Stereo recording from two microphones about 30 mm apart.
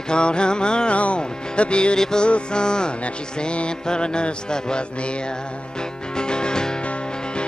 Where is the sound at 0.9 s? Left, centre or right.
Left.